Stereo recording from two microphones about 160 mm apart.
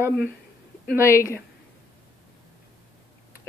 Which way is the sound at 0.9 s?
15° left (ahead or behind).